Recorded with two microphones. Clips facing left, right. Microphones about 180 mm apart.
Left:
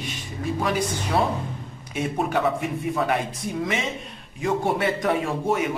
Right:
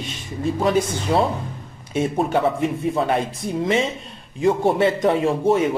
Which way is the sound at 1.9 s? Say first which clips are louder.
Right 4 dB; 25° right (ahead or behind).